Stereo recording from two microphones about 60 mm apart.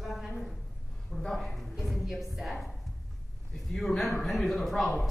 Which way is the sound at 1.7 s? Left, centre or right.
Centre.